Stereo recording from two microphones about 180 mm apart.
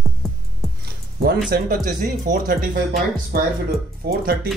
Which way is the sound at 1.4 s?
50° right (ahead or behind).